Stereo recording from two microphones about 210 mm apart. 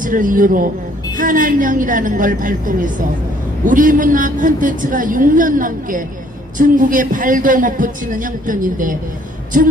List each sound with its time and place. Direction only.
0.0 s a man's voice: 40° right (ahead or behind)